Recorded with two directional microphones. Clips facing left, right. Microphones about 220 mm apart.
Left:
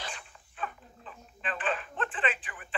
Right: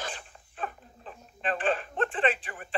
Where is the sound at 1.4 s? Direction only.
40° right (ahead or behind).